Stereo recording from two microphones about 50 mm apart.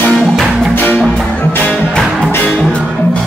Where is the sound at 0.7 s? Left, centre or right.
Left.